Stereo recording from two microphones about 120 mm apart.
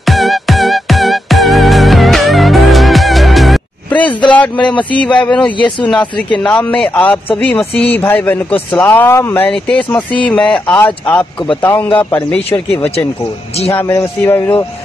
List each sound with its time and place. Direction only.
0.0 s music: centre (ahead or behind)
3.9 s a sound: 10° left (ahead or behind)
4.6 s a man's voice: 10° left (ahead or behind)
13.7 s a man's voice: 15° left (ahead or behind)